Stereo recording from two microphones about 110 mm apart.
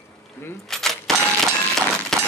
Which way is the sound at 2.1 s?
5° left (ahead or behind).